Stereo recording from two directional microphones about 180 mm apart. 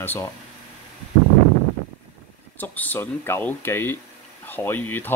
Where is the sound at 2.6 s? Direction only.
10° left (ahead or behind).